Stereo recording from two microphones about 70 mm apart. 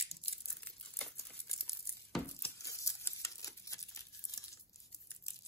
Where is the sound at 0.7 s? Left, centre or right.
Centre.